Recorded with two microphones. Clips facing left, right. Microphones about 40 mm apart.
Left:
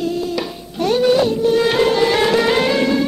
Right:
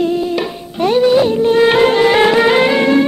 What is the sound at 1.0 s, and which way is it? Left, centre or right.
Music, centre.